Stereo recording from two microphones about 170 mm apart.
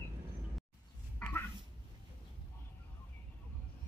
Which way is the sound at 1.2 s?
10° left (ahead or behind).